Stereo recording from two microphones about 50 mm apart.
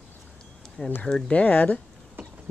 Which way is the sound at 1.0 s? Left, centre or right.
Left.